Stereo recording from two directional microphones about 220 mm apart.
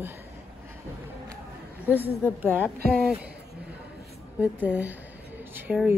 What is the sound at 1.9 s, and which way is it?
Speech, 10° right (ahead or behind).